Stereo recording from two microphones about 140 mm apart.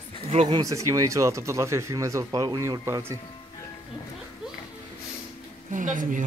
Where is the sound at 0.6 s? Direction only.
25° right (ahead or behind).